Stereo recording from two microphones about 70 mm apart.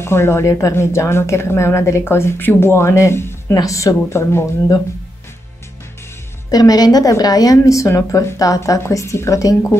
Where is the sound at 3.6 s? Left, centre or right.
Left.